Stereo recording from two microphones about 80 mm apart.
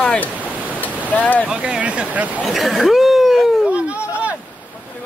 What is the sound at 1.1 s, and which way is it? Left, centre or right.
Speech, centre.